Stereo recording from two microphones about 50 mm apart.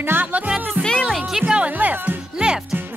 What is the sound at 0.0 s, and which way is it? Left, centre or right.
Speech, right.